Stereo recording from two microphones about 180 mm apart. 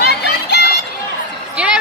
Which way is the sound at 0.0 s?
65° left (ahead or behind).